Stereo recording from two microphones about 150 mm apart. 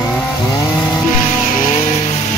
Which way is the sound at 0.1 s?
20° left (ahead or behind).